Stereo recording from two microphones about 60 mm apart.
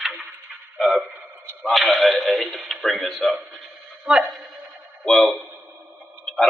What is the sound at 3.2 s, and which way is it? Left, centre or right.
Speech, right.